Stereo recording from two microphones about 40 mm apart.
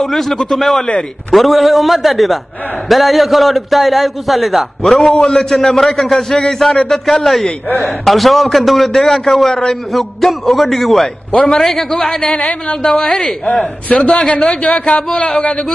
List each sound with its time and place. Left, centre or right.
0.0 s a man's voice: centre
12.3 s speech: left
12.8 s a man's voice: centre